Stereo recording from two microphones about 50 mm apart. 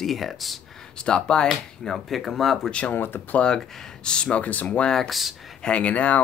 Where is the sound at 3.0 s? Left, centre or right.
Left.